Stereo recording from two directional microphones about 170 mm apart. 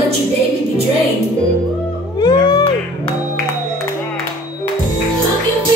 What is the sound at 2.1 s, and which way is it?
Music, 25° left (ahead or behind).